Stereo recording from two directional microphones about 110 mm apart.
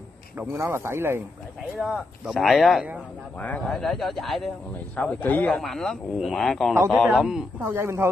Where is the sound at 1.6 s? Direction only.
5° right (ahead or behind).